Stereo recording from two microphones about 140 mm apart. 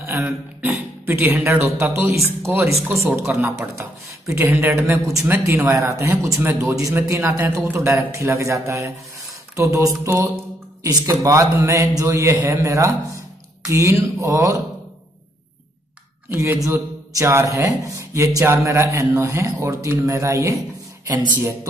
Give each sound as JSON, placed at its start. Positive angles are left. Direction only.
{"t": 0.0, "sound": "a man's voice", "side_deg": -15}
{"t": 16.3, "sound": "a man's voice", "side_deg": -15}